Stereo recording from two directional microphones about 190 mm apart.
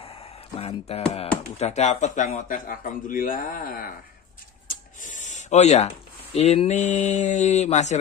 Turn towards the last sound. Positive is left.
turn(degrees=35)  # may be behind; listen again after turning